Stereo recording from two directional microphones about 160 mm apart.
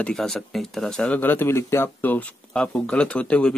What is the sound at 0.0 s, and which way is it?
Speech, centre (ahead or behind).